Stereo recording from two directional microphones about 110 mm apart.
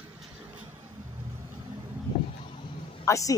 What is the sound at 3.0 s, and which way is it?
Speech, 30° left (ahead or behind).